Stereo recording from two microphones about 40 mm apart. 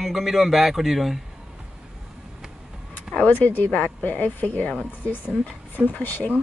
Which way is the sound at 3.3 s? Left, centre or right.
Left.